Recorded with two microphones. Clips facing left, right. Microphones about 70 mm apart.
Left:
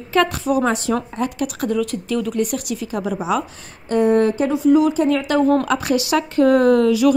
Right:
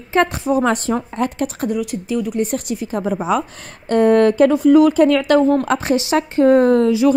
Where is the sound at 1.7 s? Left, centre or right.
Centre.